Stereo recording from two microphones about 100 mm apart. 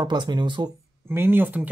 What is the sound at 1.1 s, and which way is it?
Speech, 20° right (ahead or behind).